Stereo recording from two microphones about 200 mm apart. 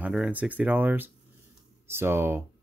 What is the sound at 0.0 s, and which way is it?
Speech, 5° right (ahead or behind).